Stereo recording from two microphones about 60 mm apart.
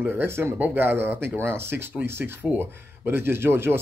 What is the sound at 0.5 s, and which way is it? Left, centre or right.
Speech, right.